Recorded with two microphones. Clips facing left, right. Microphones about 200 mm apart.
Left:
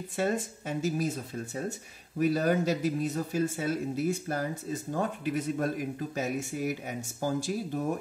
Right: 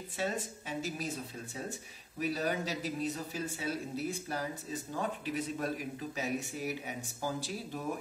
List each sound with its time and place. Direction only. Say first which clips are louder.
0.1 s speech: left 6 dB; 45° left (ahead or behind)